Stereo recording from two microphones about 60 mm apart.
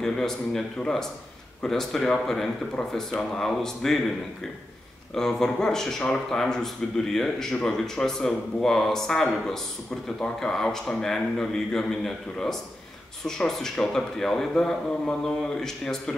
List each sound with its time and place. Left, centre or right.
0.0 s speech: centre
5.1 s speech: centre